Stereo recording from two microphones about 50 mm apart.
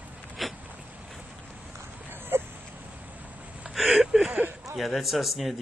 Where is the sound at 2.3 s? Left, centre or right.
Right.